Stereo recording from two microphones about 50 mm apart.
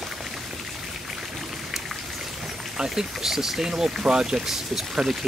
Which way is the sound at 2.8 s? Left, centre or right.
Centre.